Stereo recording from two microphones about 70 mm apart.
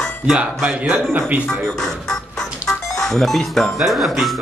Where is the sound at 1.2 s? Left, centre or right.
Right.